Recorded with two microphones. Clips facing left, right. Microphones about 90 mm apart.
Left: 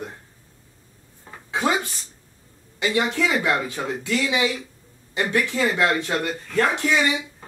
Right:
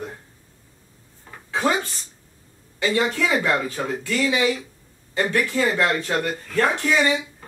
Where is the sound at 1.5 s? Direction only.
15° left (ahead or behind).